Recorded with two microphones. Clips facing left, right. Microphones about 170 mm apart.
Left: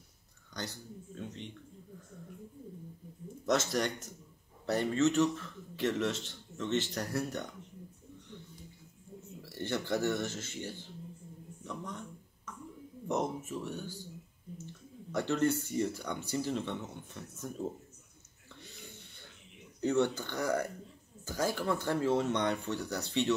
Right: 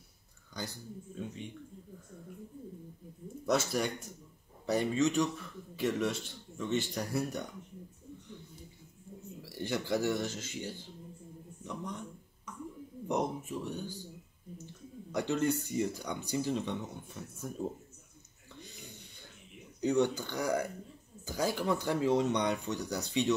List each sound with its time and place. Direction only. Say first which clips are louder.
1.1 s speech: right 2 dB; 10° right (ahead or behind)
3.4 s speech: even; 10° right (ahead or behind)
9.4 s speech: even; 10° right (ahead or behind)
13.5 s speech: right 1 dB; 15° right (ahead or behind)
15.1 s speech: left 1 dB; 15° right (ahead or behind)
19.8 s speech: right 1 dB; 15° right (ahead or behind)